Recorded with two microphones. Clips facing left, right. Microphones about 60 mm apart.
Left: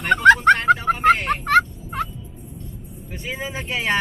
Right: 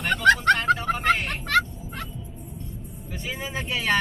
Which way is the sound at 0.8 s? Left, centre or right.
Centre.